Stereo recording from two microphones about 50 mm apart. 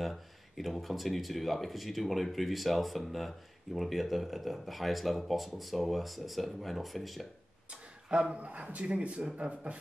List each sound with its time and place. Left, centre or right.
0.0 s speech: centre
7.7 s a sound: centre
8.4 s speech: right